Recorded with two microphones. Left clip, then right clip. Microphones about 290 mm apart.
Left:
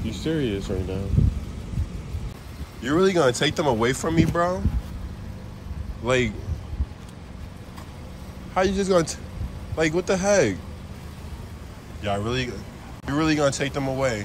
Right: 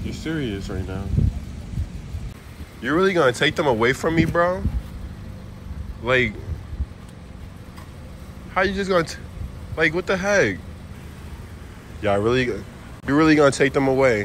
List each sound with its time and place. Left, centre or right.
0.0 s speech: centre
2.8 s speech: centre
6.0 s speech: centre
8.5 s speech: centre
12.0 s speech: centre